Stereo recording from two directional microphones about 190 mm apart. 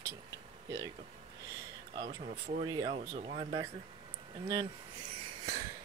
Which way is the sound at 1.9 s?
30° right (ahead or behind).